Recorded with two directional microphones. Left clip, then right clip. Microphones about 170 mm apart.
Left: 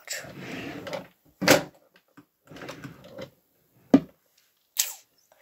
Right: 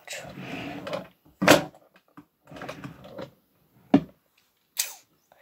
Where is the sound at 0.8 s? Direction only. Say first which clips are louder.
Right 2 dB; 35° left (ahead or behind).